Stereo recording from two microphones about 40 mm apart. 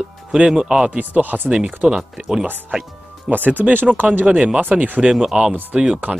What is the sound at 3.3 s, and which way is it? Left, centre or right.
Speech, right.